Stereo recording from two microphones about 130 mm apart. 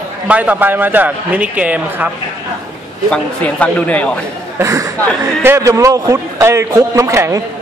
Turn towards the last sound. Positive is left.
turn(degrees=-25)  # may be behind; listen again after turning